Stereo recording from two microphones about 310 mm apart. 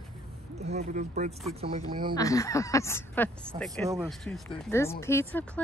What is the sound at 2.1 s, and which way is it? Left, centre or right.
Speech, centre.